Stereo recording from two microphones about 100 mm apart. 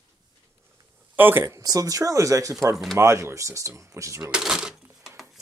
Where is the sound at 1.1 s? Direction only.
20° right (ahead or behind).